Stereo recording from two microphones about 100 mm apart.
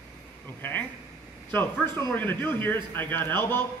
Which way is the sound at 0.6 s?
20° left (ahead or behind).